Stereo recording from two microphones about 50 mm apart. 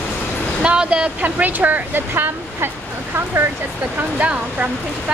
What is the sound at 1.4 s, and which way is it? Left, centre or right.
Speech, right.